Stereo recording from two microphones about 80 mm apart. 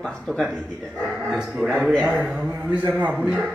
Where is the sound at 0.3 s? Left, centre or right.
Right.